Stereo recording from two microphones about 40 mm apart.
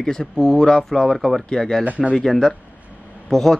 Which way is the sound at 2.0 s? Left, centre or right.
Centre.